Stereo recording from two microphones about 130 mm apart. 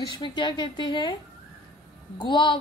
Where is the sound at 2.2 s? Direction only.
40° left (ahead or behind).